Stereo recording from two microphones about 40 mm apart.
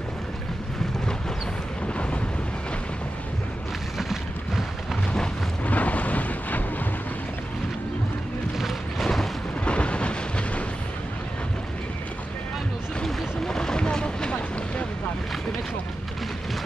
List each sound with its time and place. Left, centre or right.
4.0 s a sound: centre
5.7 s wind noise: left
9.7 s thunder: left
13.0 s boat: centre